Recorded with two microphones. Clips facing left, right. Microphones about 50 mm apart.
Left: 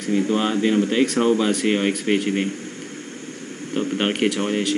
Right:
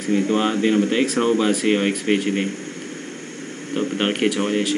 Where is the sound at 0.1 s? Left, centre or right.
Centre.